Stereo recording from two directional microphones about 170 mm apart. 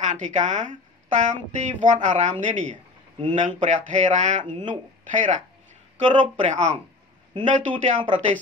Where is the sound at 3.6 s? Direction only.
45° right (ahead or behind).